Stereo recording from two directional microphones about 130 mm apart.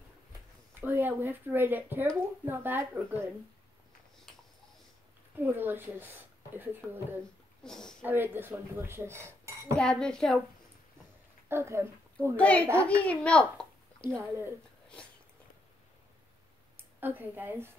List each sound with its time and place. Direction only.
0.7 s speech: 15° right (ahead or behind)
5.4 s speech: 15° right (ahead or behind)
7.6 s speech: 5° left (ahead or behind)
8.0 s speech: 15° right (ahead or behind)
9.8 s speech: 5° left (ahead or behind)
11.4 s speech: 20° right (ahead or behind)
12.4 s a child's voice: 10° left (ahead or behind)
17.0 s speech: 15° right (ahead or behind)